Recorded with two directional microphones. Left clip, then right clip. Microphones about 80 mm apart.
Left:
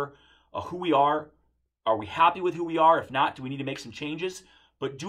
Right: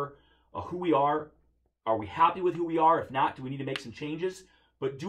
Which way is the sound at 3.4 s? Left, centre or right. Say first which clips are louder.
Left 1 dB; centre.